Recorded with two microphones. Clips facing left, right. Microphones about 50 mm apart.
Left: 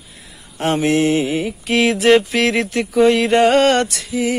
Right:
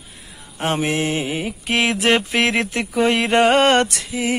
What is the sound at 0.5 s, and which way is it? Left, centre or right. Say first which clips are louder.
Mantra: left 3 dB; centre.